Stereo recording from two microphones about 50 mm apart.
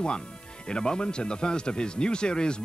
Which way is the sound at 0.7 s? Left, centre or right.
Centre.